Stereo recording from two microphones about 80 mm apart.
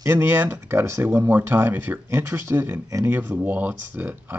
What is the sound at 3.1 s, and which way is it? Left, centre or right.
Speech, right.